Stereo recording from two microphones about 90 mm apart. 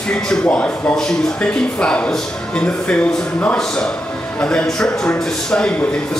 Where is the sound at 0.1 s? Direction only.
10° left (ahead or behind).